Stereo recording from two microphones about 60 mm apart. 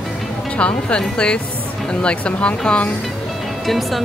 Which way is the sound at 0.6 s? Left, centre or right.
Centre.